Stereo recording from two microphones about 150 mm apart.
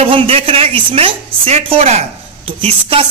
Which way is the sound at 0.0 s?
40° right (ahead or behind).